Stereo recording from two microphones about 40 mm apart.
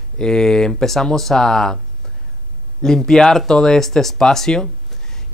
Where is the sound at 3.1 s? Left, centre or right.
Centre.